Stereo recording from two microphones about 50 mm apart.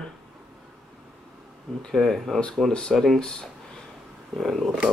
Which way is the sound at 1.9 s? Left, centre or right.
Centre.